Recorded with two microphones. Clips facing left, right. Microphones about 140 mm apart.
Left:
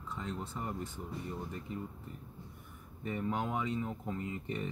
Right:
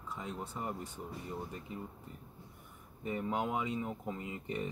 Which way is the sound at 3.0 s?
15° right (ahead or behind).